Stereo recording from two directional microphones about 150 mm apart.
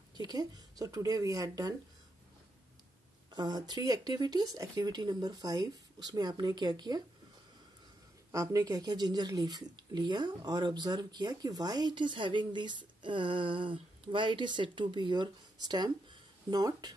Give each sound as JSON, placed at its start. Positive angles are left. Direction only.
{"t": 0.1, "sound": "speech", "side_deg": -25}
{"t": 3.3, "sound": "speech", "side_deg": -25}
{"t": 8.3, "sound": "speech", "side_deg": -20}